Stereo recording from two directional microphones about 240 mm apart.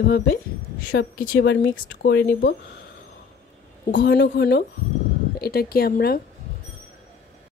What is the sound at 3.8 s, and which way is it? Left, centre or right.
Speech, left.